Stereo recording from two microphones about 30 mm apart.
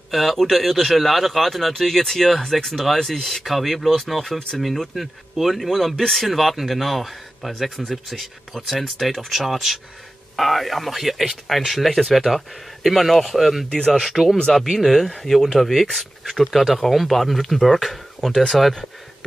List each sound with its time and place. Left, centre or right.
0.1 s speech: centre
13.7 s speech: left
14.1 s speech: centre
14.5 s speech: centre